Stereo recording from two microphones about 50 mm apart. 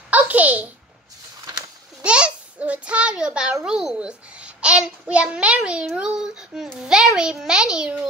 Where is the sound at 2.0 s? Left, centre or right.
Right.